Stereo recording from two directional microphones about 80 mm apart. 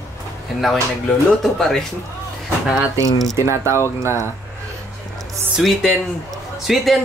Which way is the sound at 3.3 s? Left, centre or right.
Right.